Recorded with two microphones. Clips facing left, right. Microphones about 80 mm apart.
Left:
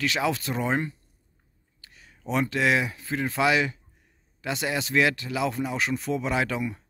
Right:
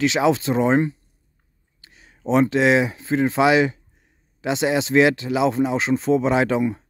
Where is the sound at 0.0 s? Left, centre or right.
Right.